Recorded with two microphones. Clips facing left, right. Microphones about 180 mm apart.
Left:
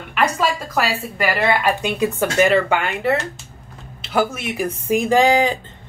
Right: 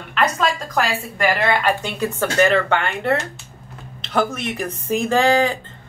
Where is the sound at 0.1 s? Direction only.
10° left (ahead or behind).